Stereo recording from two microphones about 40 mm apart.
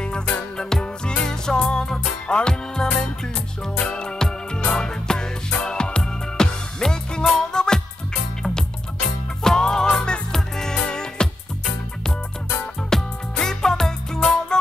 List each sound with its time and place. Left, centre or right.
0.0 s music: left
9.4 s music: centre
12.9 s music: centre